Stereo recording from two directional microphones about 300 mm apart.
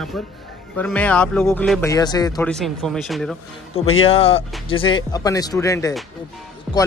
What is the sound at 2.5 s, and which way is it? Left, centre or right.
Speech, centre.